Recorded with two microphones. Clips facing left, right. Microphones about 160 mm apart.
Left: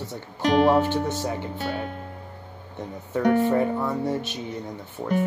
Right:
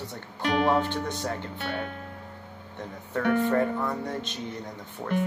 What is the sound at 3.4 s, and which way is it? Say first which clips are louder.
Speech: left 3 dB; 10° left (ahead or behind).